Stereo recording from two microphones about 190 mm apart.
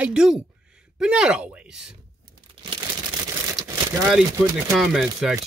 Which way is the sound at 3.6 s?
20° right (ahead or behind).